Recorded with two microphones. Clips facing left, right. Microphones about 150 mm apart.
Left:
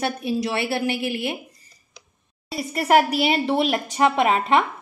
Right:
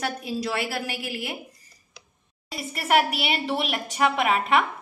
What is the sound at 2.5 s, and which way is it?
A woman's voice, 40° left (ahead or behind).